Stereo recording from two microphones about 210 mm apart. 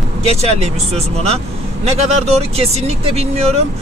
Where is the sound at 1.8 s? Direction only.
30° right (ahead or behind).